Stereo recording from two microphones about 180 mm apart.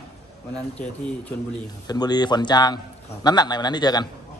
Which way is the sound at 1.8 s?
20° left (ahead or behind).